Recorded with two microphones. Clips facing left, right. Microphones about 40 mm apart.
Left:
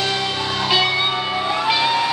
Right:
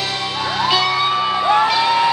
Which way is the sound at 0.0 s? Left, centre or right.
Centre.